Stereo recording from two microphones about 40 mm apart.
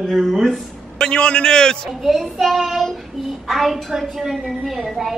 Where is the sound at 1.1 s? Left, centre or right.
Left.